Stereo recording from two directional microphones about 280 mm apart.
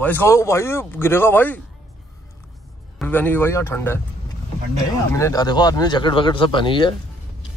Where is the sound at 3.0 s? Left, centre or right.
Centre.